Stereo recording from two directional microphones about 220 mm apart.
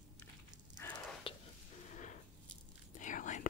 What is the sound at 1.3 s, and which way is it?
Whispering, 25° left (ahead or behind).